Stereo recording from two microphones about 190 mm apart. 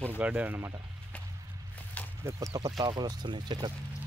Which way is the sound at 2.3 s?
20° right (ahead or behind).